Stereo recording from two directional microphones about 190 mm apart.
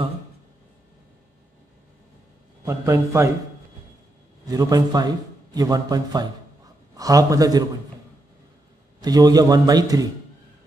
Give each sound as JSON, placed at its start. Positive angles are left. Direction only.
{"t": 2.6, "sound": "a man's voice", "side_deg": -15}
{"t": 4.5, "sound": "a man's voice", "side_deg": -20}
{"t": 9.0, "sound": "a man's voice", "side_deg": -20}